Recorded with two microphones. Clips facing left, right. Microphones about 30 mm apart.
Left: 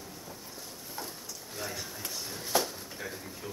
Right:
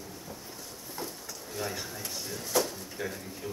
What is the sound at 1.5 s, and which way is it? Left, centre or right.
Speech, centre.